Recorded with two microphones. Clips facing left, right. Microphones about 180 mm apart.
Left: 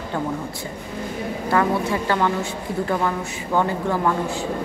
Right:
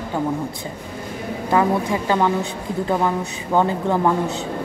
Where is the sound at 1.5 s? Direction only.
15° right (ahead or behind).